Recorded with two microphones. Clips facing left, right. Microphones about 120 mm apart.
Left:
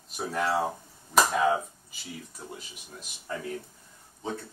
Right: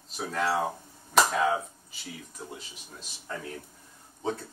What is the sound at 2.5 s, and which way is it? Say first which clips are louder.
Speech: left 1 dB; 10° left (ahead or behind).